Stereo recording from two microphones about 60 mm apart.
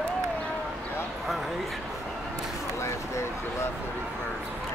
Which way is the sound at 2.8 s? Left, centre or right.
Left.